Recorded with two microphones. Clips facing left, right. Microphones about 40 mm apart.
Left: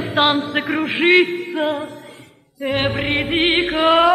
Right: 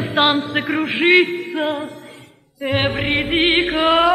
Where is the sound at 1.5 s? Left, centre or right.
Centre.